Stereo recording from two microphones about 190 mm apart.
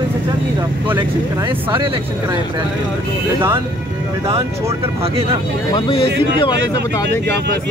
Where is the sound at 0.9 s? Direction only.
25° right (ahead or behind).